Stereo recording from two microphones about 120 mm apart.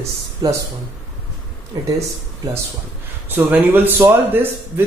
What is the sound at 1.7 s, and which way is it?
Speech, 35° right (ahead or behind).